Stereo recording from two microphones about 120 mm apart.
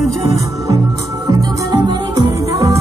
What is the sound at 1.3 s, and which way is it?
Music, 30° right (ahead or behind).